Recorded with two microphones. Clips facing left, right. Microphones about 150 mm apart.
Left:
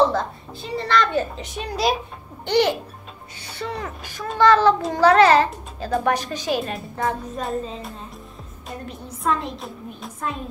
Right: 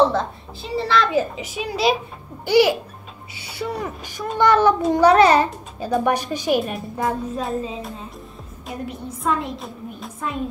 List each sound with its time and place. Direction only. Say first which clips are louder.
0.1 s a woman's voice: right 1 dB; centre (ahead or behind)